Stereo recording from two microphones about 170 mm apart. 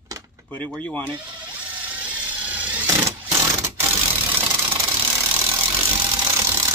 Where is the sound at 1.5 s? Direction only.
10° right (ahead or behind).